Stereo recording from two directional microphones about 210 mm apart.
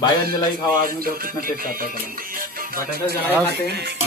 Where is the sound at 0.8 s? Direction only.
45° right (ahead or behind).